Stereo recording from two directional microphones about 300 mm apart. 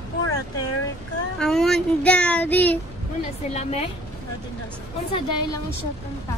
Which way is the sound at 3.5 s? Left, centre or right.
Left.